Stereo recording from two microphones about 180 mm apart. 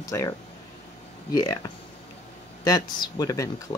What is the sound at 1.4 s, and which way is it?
Speech, 20° left (ahead or behind).